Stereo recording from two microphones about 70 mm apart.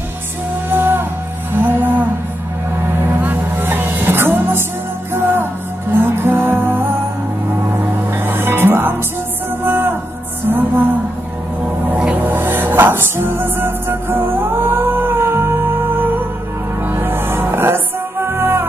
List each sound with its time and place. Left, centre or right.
0.7 s music: right
1.5 s cattle: right
2.9 s music: right
12.2 s music: right